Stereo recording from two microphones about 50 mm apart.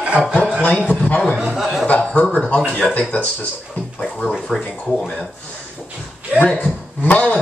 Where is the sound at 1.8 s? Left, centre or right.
Left.